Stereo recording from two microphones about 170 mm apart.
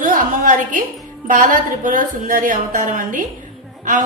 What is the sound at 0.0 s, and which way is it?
A woman's voice, 55° right (ahead or behind).